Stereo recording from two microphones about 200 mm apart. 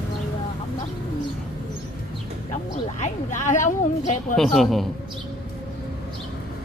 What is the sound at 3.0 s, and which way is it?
A woman's voice, 40° left (ahead or behind).